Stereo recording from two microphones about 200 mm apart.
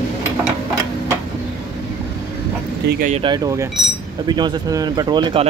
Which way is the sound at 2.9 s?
45° right (ahead or behind).